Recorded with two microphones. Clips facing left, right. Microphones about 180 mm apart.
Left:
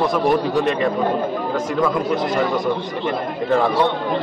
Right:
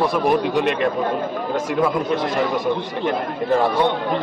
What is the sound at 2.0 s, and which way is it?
Speech, centre (ahead or behind).